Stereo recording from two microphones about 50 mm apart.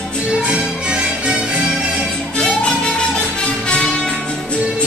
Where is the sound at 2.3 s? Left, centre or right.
Centre.